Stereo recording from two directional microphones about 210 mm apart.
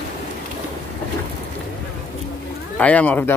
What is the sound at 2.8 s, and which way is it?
Speech, 5° left (ahead or behind).